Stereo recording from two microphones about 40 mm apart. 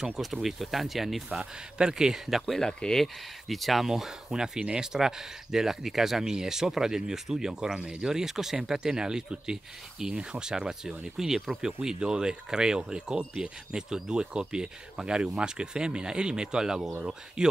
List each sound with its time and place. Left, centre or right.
0.2 s speech: centre
1.3 s speech: right
2.6 s speech: centre
3.4 s speech: centre
3.8 s speech: centre